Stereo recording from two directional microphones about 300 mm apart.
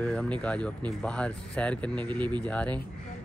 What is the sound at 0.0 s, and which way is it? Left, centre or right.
Speech, centre.